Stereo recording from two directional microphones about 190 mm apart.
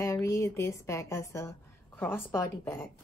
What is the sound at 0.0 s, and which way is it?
A woman's voice, 15° left (ahead or behind).